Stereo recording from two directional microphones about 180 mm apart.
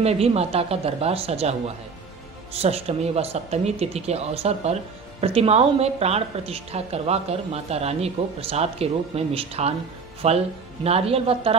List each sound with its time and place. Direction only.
0.0 s a woman's voice: 35° right (ahead or behind)